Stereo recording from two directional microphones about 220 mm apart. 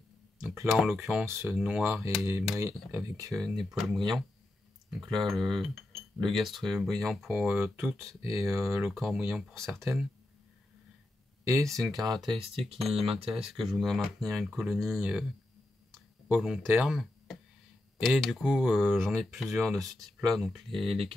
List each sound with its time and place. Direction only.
0.7 s speech: centre (ahead or behind)
3.3 s speech: centre (ahead or behind)
5.0 s speech: centre (ahead or behind)
8.3 s speech: 15° right (ahead or behind)
8.9 s speech: centre (ahead or behind)
11.6 s speech: centre (ahead or behind)
12.0 s speech: 20° right (ahead or behind)
12.5 s speech: centre (ahead or behind)
12.9 s speech: 25° right (ahead or behind)
13.5 s speech: centre (ahead or behind)
15.9 s a sound: centre (ahead or behind)
17.9 s speech: centre (ahead or behind)